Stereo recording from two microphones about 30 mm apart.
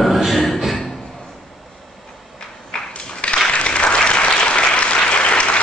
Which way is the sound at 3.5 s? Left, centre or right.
Left.